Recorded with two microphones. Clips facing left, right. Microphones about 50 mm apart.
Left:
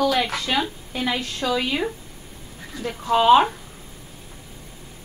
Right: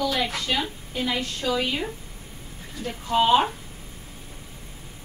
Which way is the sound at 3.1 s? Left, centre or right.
Left.